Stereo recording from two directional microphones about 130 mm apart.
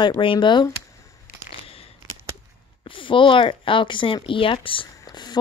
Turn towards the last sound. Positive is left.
turn(degrees=35)  # may be behind; listen again after turning